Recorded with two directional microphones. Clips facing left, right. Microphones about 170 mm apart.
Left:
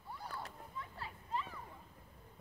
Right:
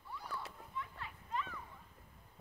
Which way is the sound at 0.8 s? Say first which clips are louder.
Right 2 dB; 35° left (ahead or behind).